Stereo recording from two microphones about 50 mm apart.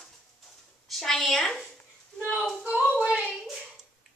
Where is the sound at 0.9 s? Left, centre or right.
Centre.